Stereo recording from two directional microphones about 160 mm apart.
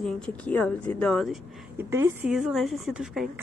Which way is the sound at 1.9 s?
15° right (ahead or behind).